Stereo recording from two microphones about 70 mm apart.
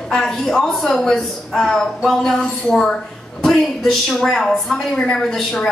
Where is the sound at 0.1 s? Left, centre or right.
Centre.